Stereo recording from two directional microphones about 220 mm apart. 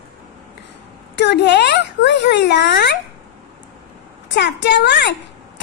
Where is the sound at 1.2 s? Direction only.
50° left (ahead or behind).